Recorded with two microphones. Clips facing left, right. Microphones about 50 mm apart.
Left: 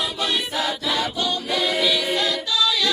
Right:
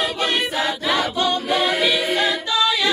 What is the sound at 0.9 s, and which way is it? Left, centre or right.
Choir, right.